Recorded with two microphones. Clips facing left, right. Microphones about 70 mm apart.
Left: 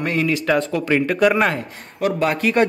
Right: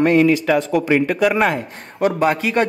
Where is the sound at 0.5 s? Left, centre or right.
Centre.